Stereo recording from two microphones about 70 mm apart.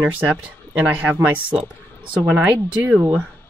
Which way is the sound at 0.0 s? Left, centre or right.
Centre.